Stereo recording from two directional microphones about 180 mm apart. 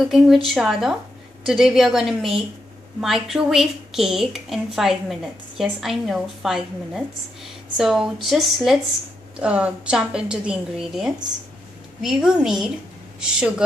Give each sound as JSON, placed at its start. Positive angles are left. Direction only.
{"t": 0.0, "sound": "a woman's voice", "side_deg": 0}